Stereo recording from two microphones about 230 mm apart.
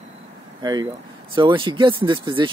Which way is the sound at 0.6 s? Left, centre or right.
Centre.